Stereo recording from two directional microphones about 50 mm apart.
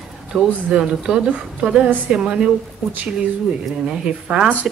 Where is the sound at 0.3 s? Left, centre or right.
Centre.